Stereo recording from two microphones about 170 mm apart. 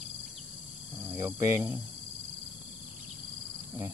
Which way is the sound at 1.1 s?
15° right (ahead or behind).